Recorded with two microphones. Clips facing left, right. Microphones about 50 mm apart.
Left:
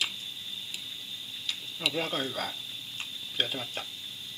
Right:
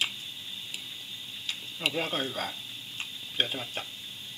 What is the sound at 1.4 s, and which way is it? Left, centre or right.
Speech, centre.